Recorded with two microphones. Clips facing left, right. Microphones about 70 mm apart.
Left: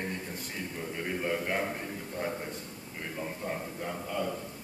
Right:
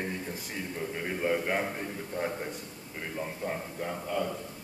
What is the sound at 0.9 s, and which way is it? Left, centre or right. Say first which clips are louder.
Speech: right 2 dB; centre.